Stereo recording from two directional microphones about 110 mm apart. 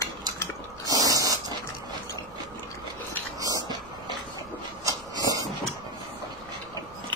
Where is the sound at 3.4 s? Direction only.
35° right (ahead or behind).